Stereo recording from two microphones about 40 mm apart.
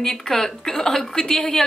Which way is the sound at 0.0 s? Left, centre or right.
Centre.